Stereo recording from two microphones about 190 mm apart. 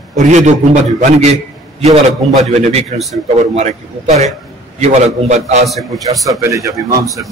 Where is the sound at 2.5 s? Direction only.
35° right (ahead or behind).